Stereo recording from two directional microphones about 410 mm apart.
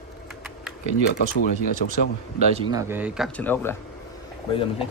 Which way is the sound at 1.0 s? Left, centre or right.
Left.